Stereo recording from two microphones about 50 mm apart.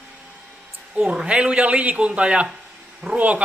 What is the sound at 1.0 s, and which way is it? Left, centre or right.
Speech, centre.